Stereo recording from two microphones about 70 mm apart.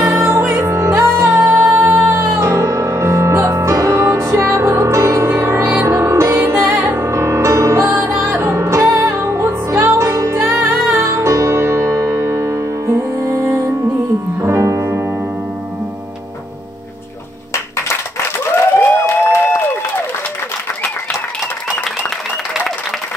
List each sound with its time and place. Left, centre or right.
0.0 s music: right
4.7 s music: right
6.6 s music: right
19.0 s a sound: left